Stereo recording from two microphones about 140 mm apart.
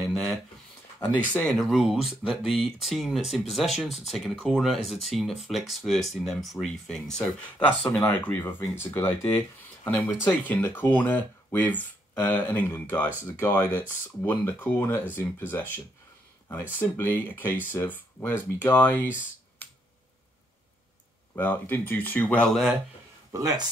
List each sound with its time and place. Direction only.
0.0 s a sound: centre (ahead or behind)
0.9 s speech: 10° left (ahead or behind)
19.6 s finger snapping: 15° left (ahead or behind)
21.4 s speech: 15° left (ahead or behind)
23.3 s speech: 25° right (ahead or behind)